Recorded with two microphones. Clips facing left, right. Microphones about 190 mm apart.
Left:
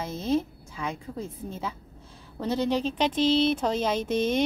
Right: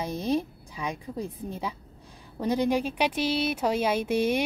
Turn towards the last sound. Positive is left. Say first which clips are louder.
# right 1 dB
turn(degrees=-10)  # may be behind; listen again after turning